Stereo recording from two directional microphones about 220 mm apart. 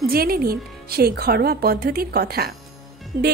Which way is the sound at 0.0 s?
45° right (ahead or behind).